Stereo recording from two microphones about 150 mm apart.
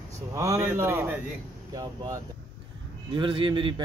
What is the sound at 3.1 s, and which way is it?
Speech, 35° right (ahead or behind).